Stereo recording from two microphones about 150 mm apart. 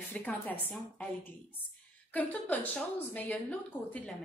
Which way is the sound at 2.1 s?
10° left (ahead or behind).